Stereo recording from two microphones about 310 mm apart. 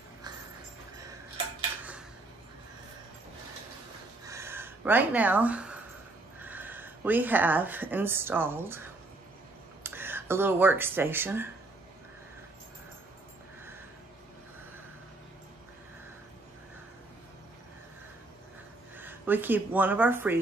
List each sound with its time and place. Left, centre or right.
4.3 s gasp: centre
6.4 s speech: centre
9.8 s speech: centre
18.9 s speech: centre